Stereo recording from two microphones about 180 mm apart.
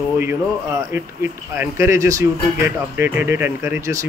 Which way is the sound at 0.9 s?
10° right (ahead or behind).